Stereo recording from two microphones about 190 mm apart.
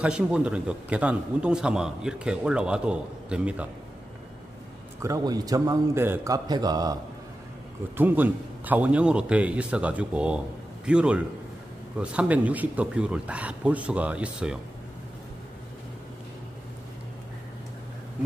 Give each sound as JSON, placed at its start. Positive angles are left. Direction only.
{"t": 0.0, "sound": "a man's voice", "side_deg": -5}
{"t": 5.0, "sound": "a man's voice", "side_deg": -20}
{"t": 8.0, "sound": "a man's voice", "side_deg": -10}